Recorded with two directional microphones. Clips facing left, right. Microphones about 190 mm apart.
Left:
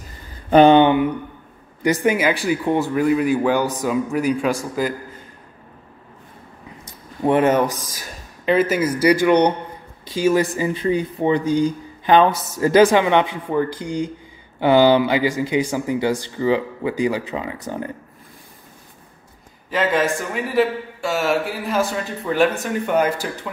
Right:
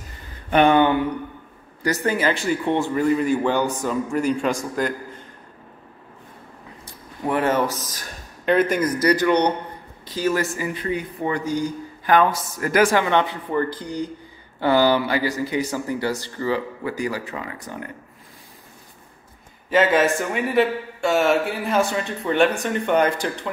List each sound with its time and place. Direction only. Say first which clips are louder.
0.5 s a sound: left 5 dB; 25° left (ahead or behind)
1.8 s speech: left 4 dB; 15° left (ahead or behind)
6.9 s speech: left 6 dB; 20° left (ahead or behind)
10.7 s speech: left 6 dB; 30° left (ahead or behind)
19.7 s speech: right 2 dB; centre (ahead or behind)